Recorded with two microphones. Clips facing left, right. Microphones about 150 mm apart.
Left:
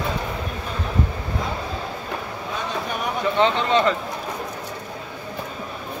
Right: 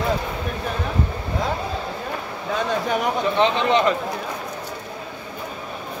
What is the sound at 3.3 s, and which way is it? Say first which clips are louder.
Speech: even; 15° right (ahead or behind).